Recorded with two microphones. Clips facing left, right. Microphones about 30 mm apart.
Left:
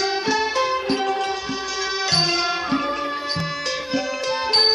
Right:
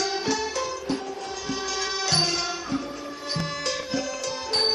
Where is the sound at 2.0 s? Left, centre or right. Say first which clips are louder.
Left 4 dB; left.